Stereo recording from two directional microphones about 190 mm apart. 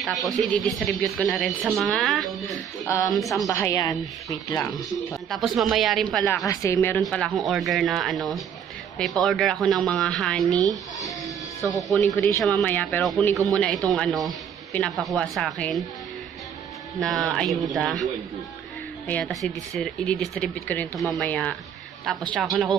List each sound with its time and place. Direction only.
0.0 s a man's voice: centre (ahead or behind)
3.4 s speech: 15° left (ahead or behind)
4.7 s a man's voice: centre (ahead or behind)
6.4 s speech: 15° left (ahead or behind)
7.0 s a man's voice: centre (ahead or behind)
17.0 s a man's voice: centre (ahead or behind)
19.0 s a man's voice: 5° left (ahead or behind)